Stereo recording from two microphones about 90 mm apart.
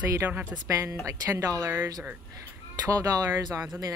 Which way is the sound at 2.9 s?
40° right (ahead or behind).